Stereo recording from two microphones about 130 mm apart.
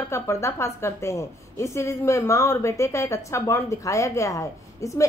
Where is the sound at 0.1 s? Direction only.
20° left (ahead or behind).